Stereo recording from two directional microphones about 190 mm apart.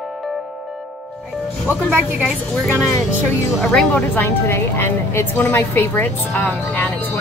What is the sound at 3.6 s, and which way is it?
A woman's voice, 5° left (ahead or behind).